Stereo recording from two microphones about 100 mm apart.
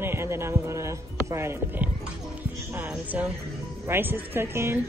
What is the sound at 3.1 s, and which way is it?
Speech, 15° right (ahead or behind).